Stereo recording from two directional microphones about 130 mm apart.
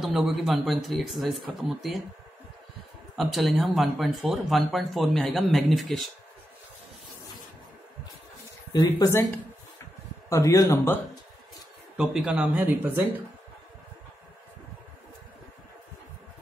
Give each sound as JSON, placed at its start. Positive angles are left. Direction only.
{"t": 0.0, "sound": "speech", "side_deg": 0}
{"t": 3.2, "sound": "speech", "side_deg": 0}
{"t": 8.9, "sound": "speech", "side_deg": 15}
{"t": 12.0, "sound": "speech", "side_deg": -5}